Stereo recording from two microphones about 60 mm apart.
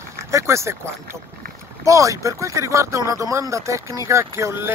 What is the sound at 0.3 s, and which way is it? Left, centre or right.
Speech, right.